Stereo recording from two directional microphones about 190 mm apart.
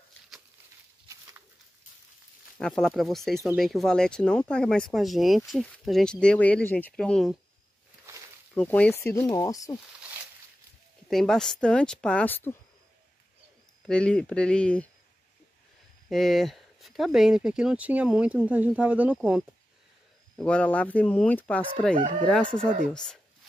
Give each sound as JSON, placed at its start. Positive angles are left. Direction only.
{"t": 2.6, "sound": "speech", "side_deg": 0}
{"t": 8.5, "sound": "speech", "side_deg": 5}
{"t": 11.1, "sound": "speech", "side_deg": 0}
{"t": 13.8, "sound": "speech", "side_deg": 5}
{"t": 16.1, "sound": "speech", "side_deg": 0}
{"t": 20.3, "sound": "speech", "side_deg": 5}
{"t": 21.9, "sound": "speech", "side_deg": -40}
{"t": 22.2, "sound": "speech", "side_deg": 5}